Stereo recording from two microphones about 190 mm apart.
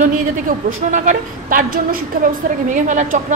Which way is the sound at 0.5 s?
50° right (ahead or behind).